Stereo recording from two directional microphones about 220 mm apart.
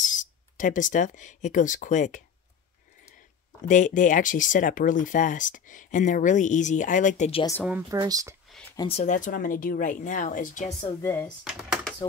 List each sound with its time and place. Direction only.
0.0 s speech: 35° left (ahead or behind)
3.6 s speech: 35° left (ahead or behind)
7.9 s speech: 15° right (ahead or behind)
8.7 s speech: 25° left (ahead or behind)
10.8 s a woman's voice: 10° left (ahead or behind)
11.4 s computer keyboard: 5° right (ahead or behind)